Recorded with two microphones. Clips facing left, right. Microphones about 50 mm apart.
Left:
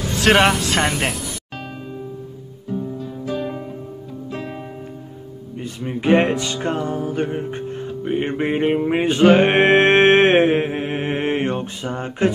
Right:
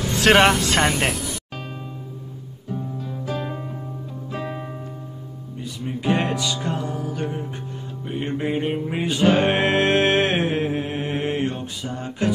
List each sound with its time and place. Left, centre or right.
0.2 s speech: centre
3.0 s music: centre
5.6 s music: left